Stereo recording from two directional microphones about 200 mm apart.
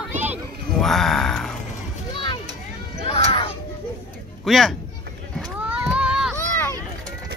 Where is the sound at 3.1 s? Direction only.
30° left (ahead or behind).